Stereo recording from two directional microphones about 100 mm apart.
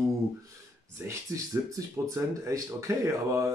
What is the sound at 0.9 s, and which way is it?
Speech, 30° right (ahead or behind).